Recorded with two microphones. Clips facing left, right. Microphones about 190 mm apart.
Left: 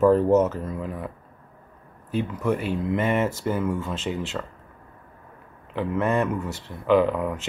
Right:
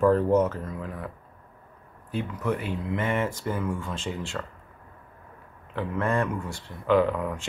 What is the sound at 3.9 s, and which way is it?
Speech, 20° left (ahead or behind).